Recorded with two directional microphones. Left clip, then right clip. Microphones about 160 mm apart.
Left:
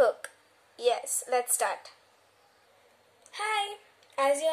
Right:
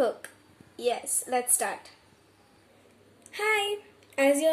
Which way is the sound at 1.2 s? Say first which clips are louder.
Even; 10° left (ahead or behind).